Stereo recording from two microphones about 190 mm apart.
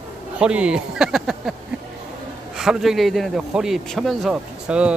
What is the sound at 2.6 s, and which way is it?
Speech, centre (ahead or behind).